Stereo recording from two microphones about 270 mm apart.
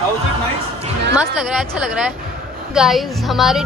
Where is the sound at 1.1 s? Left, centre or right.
Centre.